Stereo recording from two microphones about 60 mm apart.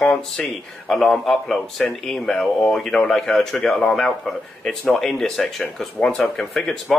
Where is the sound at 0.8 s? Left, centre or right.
Centre.